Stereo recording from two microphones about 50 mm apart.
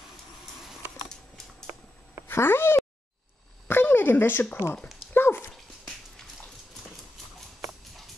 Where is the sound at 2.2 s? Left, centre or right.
Left.